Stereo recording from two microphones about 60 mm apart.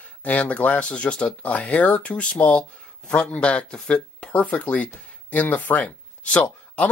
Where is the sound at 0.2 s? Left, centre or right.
Left.